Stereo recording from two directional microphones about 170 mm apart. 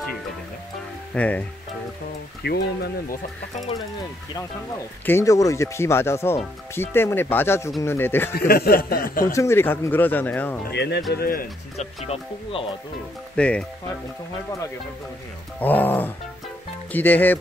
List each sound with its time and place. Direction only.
1.1 s speech: 10° left (ahead or behind)
2.4 s speech: 75° left (ahead or behind)
5.0 s speech: 15° left (ahead or behind)
8.4 s speech: 60° left (ahead or behind)
9.2 s speech: 15° left (ahead or behind)
10.7 s speech: 80° left
11.1 s speech: 60° left (ahead or behind)
12.1 s speech: 30° left (ahead or behind)
13.4 s speech: 5° left (ahead or behind)
15.6 s speech: 10° left (ahead or behind)